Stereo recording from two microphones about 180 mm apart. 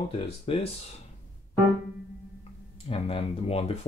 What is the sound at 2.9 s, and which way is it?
Speech, 30° left (ahead or behind).